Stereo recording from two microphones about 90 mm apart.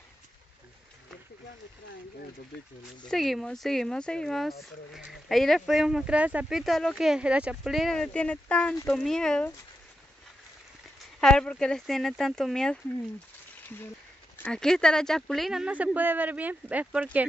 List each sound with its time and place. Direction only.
3.1 s speech: centre (ahead or behind); by 6.4 s 15° right (ahead or behind)
6.5 s speech: centre (ahead or behind)
7.0 s speech: 10° right (ahead or behind)
7.7 s speech: 5° left (ahead or behind)
11.1 s speech: 5° left (ahead or behind)
14.5 s speech: 5° left (ahead or behind)
15.6 s speech: 15° right (ahead or behind)